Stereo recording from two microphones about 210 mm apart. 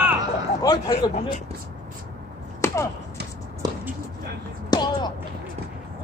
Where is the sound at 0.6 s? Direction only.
20° left (ahead or behind).